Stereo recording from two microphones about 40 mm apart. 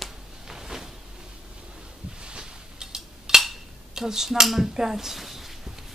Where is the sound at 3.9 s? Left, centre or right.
Centre.